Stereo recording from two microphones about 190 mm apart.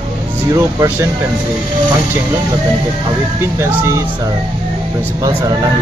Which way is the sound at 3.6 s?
15° right (ahead or behind).